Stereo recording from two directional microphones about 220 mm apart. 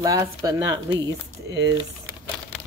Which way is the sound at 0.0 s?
15° right (ahead or behind).